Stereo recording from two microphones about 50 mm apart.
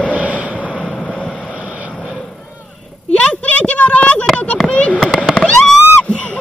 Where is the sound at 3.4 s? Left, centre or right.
Left.